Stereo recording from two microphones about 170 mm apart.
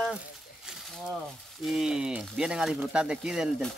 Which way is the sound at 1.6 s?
Centre (ahead or behind).